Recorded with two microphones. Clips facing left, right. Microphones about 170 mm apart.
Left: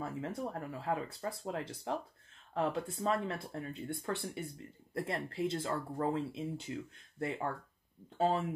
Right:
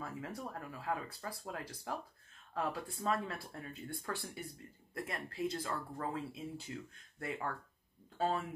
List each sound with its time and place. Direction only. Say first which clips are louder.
0.0 s speech: left 5 dB; 25° left (ahead or behind)